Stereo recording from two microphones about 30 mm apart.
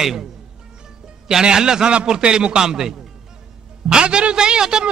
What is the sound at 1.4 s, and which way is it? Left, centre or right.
A man's voice, right.